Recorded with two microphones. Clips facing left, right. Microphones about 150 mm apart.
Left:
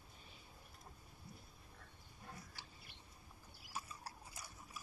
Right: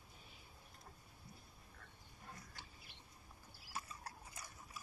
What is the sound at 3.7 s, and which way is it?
Mechanisms, 10° left (ahead or behind).